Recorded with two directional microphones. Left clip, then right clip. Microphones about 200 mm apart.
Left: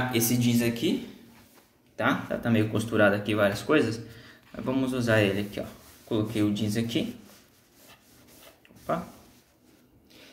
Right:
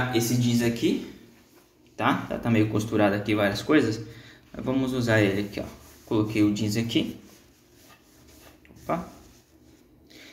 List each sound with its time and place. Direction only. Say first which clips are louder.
0.1 s speech: right 1 dB; 25° left (ahead or behind)
0.6 s speech: right 2 dB; 5° left (ahead or behind)
2.0 s a man's voice: right 1 dB; centre (ahead or behind)